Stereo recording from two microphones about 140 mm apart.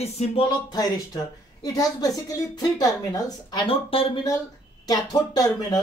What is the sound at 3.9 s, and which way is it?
Speech, 40° left (ahead or behind).